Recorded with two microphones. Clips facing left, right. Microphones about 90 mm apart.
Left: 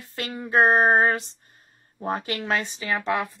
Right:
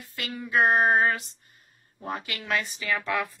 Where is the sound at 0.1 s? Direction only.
35° left (ahead or behind).